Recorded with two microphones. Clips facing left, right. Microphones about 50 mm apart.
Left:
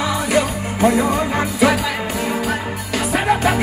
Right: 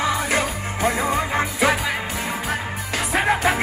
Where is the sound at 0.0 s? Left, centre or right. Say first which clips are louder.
Left 3 dB; right.